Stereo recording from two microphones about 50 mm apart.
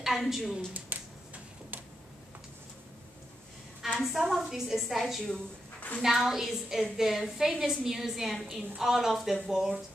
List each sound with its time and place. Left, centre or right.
0.0 s a woman's voice: centre
0.7 s finger snapping: right
3.8 s a woman's voice: centre
5.8 s a sound: left
6.0 s a woman's voice: centre